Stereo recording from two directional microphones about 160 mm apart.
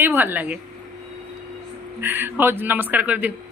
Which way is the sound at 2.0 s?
15° right (ahead or behind).